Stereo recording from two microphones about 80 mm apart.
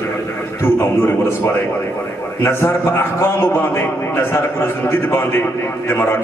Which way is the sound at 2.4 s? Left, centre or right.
Left.